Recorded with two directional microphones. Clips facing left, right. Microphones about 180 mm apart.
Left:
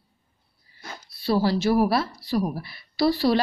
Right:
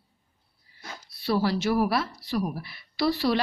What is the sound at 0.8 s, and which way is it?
Speech, 30° left (ahead or behind).